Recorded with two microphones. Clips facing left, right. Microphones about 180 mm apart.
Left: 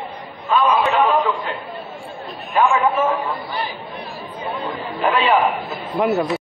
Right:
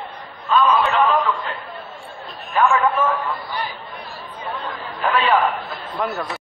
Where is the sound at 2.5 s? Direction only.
25° left (ahead or behind).